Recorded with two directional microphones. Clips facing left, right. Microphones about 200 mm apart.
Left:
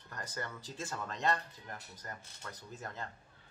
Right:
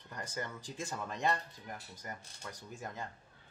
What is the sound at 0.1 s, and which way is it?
Speech, 15° right (ahead or behind).